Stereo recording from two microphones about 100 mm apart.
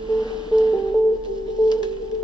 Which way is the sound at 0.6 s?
40° left (ahead or behind).